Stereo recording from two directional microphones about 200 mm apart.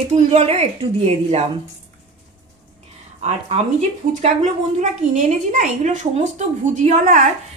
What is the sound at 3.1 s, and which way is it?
Speech, 35° right (ahead or behind).